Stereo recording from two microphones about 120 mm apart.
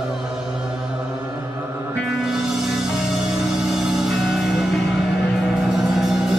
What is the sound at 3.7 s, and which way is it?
Music, centre (ahead or behind).